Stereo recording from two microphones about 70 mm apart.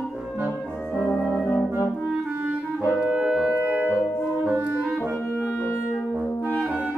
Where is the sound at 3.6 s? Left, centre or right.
Right.